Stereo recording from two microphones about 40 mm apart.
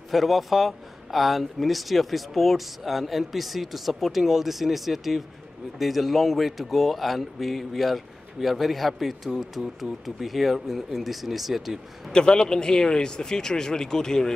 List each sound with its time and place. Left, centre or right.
0.1 s speech: centre
12.1 s speech: centre